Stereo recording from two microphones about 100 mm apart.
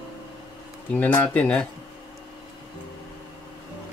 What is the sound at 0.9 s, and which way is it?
Speech, 15° left (ahead or behind).